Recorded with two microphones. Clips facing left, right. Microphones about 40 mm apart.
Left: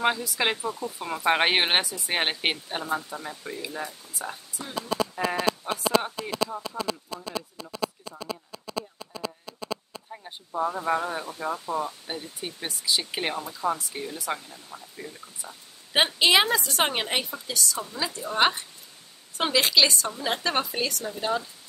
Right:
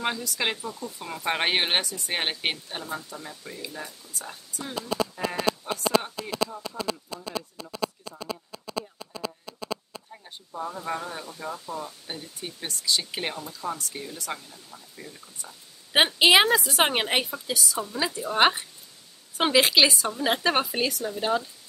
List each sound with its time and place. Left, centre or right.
0.0 s speech: centre
10.1 s speech: left
15.9 s a woman's voice: centre